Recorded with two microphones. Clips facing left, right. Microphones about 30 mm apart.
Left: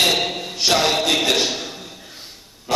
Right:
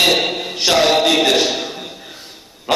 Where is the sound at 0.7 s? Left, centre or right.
Centre.